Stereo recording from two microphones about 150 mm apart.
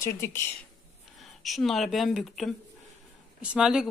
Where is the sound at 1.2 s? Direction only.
Centre (ahead or behind).